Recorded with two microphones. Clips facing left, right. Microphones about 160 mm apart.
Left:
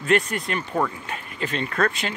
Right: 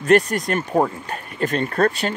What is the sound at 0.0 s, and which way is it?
Speech, 45° right (ahead or behind).